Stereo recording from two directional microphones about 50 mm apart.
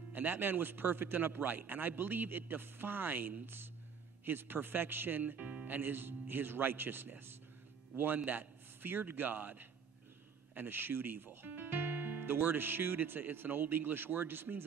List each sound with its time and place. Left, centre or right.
0.1 s a man's voice: right
5.2 s speech: right
5.7 s a man's voice: right